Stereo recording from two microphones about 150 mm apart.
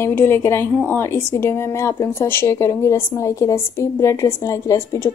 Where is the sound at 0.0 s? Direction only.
15° left (ahead or behind).